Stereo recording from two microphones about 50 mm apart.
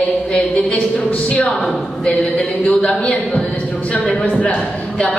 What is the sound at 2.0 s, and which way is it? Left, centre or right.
A woman's voice, centre.